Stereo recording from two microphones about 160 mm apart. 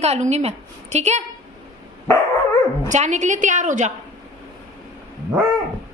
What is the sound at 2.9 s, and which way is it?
A woman's voice, 50° right (ahead or behind).